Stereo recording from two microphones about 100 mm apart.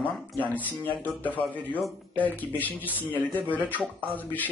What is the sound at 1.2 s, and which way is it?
Speech, 15° left (ahead or behind).